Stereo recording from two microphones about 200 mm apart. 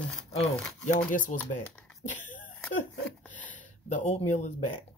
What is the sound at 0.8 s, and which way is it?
Speech, 40° left (ahead or behind).